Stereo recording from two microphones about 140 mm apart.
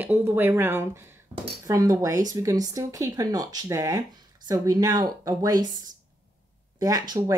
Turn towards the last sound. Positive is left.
turn(degrees=-30)  # may be behind; listen again after turning